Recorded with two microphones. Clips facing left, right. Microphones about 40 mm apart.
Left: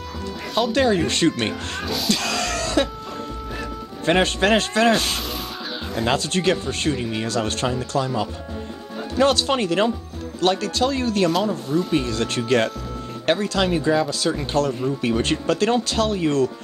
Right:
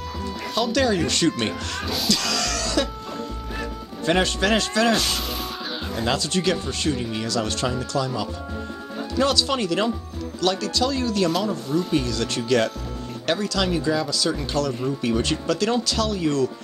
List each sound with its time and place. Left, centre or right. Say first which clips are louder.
0.6 s speech: left 2 dB; left
1.8 s music: left 2 dB; centre
2.0 s a sound: left 1 dB; left
4.0 s speech: left 2 dB; left
6.0 s speech: left 2 dB; left
7.0 s speech: left 2 dB; centre
7.2 s speech: left 1 dB; left
14.9 s speech: left 2 dB; left